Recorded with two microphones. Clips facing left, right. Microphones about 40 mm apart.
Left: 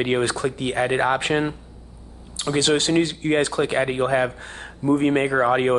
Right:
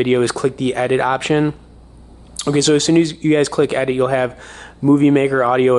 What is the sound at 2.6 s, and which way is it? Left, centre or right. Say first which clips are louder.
Speech: right 6 dB; left.